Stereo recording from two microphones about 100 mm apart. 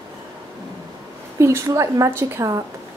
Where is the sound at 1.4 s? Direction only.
30° right (ahead or behind).